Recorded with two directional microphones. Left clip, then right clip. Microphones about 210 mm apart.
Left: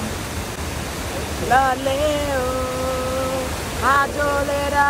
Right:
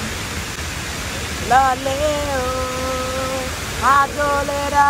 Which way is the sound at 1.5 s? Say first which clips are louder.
Right 2 dB; 5° left (ahead or behind).